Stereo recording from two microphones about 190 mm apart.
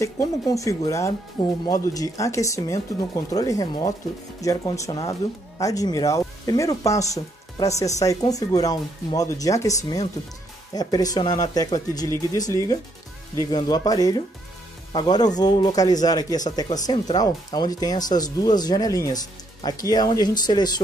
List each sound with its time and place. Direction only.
0.0 s speech: 15° left (ahead or behind)